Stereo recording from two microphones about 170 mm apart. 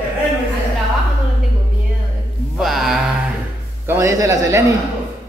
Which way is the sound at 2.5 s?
Centre (ahead or behind).